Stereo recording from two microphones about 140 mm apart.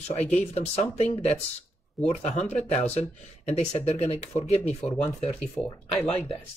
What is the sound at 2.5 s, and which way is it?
Speech, 50° left (ahead or behind).